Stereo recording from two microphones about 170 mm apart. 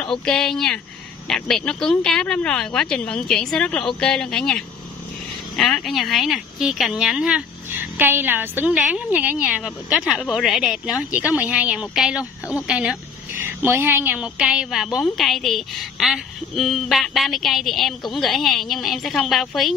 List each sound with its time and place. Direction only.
0.2 s speech: 5° left (ahead or behind)